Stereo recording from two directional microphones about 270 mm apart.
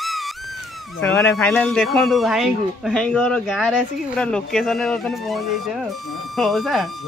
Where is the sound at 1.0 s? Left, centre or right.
Centre.